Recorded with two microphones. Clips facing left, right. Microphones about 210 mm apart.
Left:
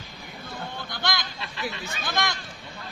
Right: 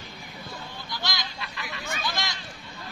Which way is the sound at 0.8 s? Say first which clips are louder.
Left 3 dB; 55° left (ahead or behind).